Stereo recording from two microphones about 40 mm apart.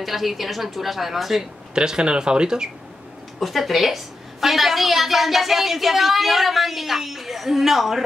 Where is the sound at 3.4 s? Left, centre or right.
Centre.